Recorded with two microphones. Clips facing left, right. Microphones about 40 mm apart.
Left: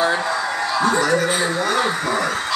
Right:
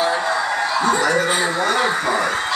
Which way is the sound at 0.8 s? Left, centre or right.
Centre.